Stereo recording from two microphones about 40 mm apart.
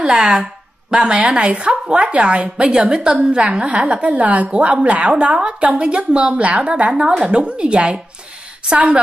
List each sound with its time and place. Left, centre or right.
0.0 s a woman's voice: centre; by 9.0 s right